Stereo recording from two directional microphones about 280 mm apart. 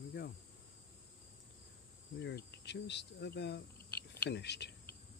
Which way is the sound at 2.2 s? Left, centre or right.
Left.